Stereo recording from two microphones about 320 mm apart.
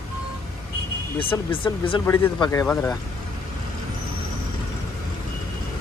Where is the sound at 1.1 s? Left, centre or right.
Centre.